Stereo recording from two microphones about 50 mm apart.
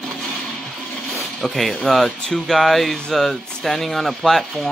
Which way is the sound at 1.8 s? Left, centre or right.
Centre.